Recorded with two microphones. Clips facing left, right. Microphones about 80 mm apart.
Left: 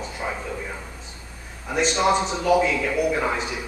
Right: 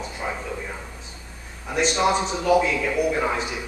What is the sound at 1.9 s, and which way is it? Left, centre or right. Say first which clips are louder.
A man's voice: left 2 dB; centre.